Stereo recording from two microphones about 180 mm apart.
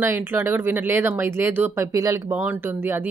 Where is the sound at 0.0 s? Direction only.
10° right (ahead or behind).